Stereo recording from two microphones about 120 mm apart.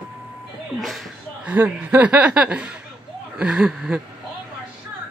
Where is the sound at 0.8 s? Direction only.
Centre (ahead or behind).